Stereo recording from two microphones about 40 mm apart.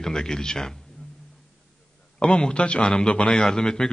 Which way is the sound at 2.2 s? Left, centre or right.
Left.